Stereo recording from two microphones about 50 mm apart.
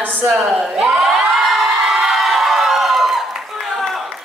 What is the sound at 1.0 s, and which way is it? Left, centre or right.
Crowd, centre.